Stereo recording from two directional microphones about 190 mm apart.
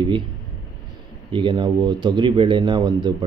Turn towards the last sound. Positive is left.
turn(degrees=-25)  # may be behind; listen again after turning